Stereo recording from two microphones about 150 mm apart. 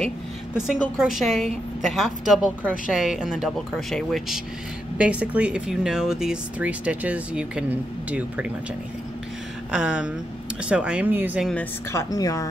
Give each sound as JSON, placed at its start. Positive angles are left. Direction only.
{"t": 0.7, "sound": "a woman's voice", "side_deg": -5}
{"t": 9.7, "sound": "a woman's voice", "side_deg": -5}
{"t": 11.5, "sound": "speech", "side_deg": 20}